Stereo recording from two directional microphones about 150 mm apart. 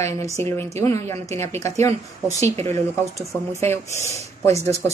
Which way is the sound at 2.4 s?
45° right (ahead or behind).